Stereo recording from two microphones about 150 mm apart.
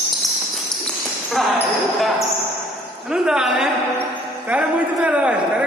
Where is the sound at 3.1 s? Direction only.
5° right (ahead or behind).